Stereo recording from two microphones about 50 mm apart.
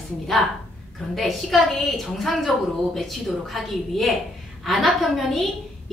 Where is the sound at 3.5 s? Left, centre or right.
Centre.